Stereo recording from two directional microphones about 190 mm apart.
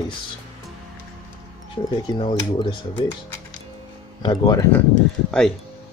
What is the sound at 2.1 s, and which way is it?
Speech, 25° left (ahead or behind).